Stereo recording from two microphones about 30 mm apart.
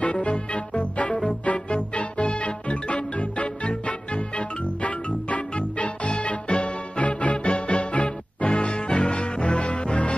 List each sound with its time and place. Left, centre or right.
0.0 s music: left
8.6 s music: left